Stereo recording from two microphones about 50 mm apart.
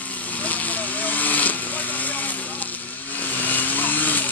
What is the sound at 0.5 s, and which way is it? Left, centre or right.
Vehicle, left.